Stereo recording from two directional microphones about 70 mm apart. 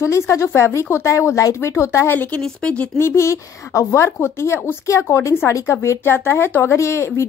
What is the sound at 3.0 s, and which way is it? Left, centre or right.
Speech, left.